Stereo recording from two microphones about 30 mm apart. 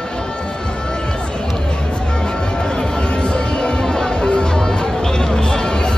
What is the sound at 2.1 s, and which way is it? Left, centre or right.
Music, left.